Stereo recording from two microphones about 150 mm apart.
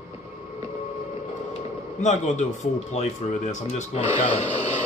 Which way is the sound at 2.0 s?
50° left (ahead or behind).